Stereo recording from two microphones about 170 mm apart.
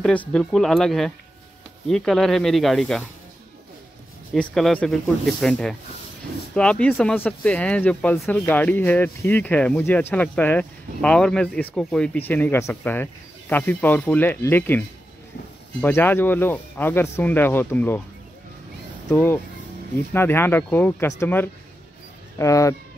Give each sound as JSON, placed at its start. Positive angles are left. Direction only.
{"t": 0.0, "sound": "speech", "side_deg": 5}
{"t": 4.3, "sound": "speech", "side_deg": 0}
{"t": 19.0, "sound": "speech", "side_deg": 10}